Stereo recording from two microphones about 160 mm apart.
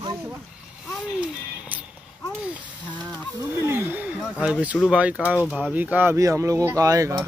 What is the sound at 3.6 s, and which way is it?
Speech, 15° right (ahead or behind).